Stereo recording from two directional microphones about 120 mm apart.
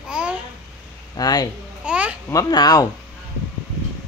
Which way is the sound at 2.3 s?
30° left (ahead or behind).